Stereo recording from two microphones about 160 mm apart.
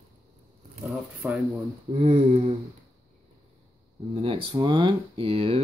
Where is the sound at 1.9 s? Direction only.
45° right (ahead or behind).